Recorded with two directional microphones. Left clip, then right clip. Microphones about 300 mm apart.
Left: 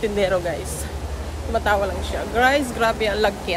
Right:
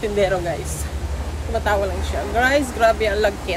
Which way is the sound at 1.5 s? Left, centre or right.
Centre.